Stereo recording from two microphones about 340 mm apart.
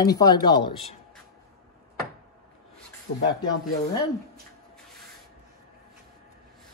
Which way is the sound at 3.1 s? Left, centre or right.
Left.